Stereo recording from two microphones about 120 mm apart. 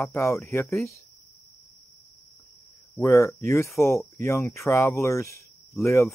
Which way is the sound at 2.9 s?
25° left (ahead or behind).